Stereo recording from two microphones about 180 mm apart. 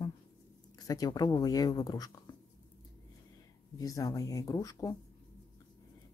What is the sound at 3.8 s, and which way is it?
Speech, 20° left (ahead or behind).